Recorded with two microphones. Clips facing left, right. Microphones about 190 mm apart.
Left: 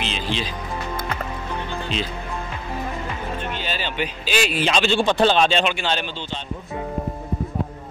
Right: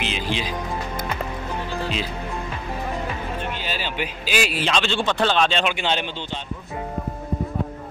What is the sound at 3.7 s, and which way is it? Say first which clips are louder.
Speech: left 1 dB; 5° right (ahead or behind).